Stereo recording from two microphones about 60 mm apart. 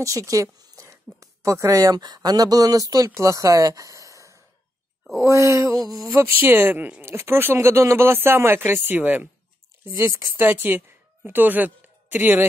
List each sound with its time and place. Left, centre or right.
0.0 s speech: right
3.2 s speech: right
5.2 s a sound: right
5.9 s a sound: right
6.4 s speech: right
9.9 s speech: right
10.2 s speech: right